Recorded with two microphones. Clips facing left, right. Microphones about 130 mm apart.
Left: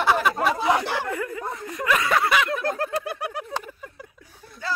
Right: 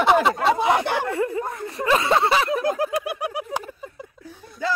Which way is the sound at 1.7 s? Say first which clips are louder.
Right 3 dB; 30° right (ahead or behind).